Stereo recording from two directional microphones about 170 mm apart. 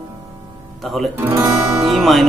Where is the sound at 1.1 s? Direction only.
10° right (ahead or behind).